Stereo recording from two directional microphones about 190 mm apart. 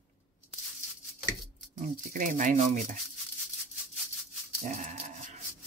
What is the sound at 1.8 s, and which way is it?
Speech, 45° right (ahead or behind).